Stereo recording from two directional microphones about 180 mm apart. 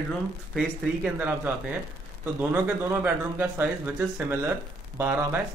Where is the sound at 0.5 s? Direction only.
5° right (ahead or behind).